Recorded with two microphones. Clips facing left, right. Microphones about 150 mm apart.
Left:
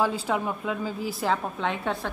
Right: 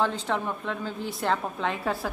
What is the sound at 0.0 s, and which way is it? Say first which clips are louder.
A woman's voice: left 1 dB; 10° left (ahead or behind).